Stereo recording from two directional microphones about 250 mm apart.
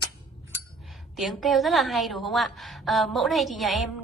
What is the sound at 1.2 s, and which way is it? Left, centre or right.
A woman's voice, centre.